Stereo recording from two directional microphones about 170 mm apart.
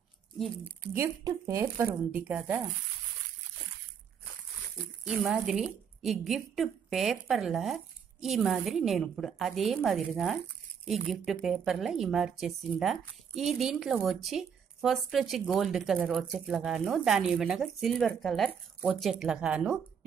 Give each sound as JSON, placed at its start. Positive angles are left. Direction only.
{"t": 0.9, "sound": "speech", "side_deg": -15}
{"t": 2.1, "sound": "speech", "side_deg": -10}
{"t": 5.0, "sound": "a woman's voice", "side_deg": 0}